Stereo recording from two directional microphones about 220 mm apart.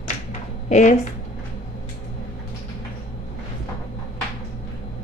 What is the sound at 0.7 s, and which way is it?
Speech, 30° left (ahead or behind).